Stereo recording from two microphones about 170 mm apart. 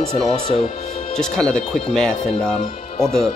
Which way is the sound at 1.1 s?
5° left (ahead or behind).